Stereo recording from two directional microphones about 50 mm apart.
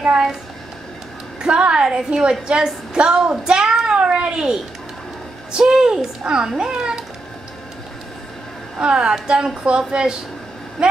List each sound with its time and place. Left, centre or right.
1.4 s a child's voice: centre
8.7 s a child's voice: centre